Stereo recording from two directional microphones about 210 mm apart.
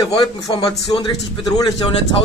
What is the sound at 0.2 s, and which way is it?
Speech, 20° left (ahead or behind).